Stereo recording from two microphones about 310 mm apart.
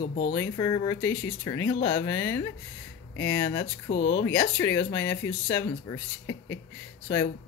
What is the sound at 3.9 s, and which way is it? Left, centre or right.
Speech, left.